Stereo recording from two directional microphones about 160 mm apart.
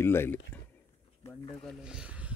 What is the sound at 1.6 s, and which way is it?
Speech, 5° left (ahead or behind).